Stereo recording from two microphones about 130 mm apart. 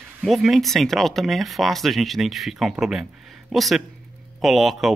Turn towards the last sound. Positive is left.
turn(degrees=0)  # may be behind; listen again after turning